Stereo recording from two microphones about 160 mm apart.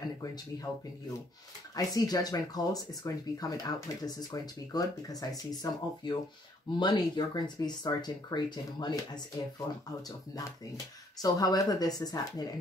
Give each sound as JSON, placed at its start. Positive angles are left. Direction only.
{"t": 1.8, "sound": "speech", "side_deg": 25}
{"t": 11.1, "sound": "speech", "side_deg": 25}